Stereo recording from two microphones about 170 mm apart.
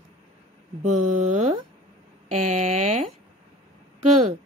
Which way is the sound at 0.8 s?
45° right (ahead or behind).